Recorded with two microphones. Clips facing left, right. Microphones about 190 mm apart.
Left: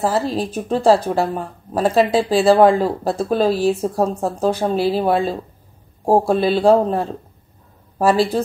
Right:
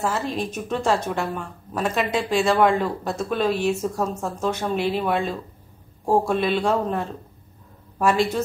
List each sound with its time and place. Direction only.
0.0 s speech: 35° left (ahead or behind)